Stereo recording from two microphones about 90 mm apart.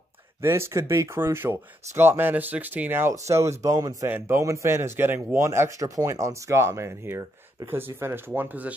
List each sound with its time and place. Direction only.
0.4 s speech: 30° right (ahead or behind)